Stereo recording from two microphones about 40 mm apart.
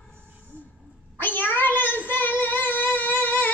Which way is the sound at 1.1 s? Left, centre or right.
Left.